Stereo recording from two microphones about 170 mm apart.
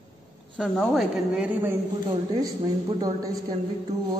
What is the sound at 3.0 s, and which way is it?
Speech, 20° right (ahead or behind).